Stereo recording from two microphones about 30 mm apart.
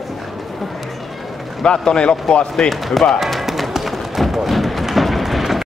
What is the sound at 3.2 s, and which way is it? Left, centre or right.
Music, centre.